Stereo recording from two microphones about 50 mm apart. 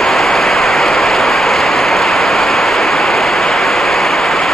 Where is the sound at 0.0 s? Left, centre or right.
Centre.